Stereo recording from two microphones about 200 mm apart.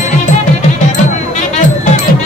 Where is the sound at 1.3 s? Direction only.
35° left (ahead or behind).